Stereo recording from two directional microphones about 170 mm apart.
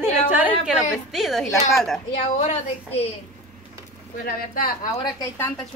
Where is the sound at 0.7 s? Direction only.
Centre (ahead or behind).